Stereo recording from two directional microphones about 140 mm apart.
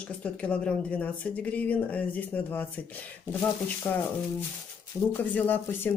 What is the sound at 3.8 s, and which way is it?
Speech, 20° left (ahead or behind).